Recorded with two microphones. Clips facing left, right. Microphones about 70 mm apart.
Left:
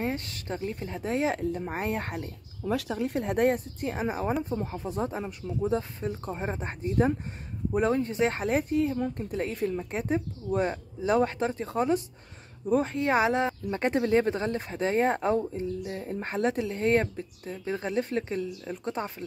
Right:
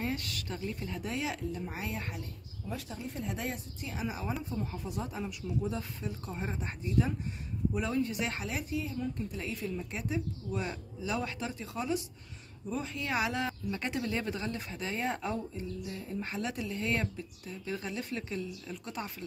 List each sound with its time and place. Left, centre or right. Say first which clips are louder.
0.0 s speech: left 4 dB; left
2.6 s speech: left 11 dB; left
12.9 s speech: left 8 dB; left